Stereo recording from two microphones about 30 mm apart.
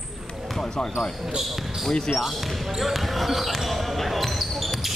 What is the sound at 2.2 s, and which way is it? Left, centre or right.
Speech, centre.